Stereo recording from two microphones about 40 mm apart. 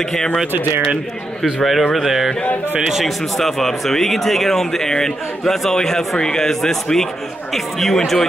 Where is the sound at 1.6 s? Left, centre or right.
Centre.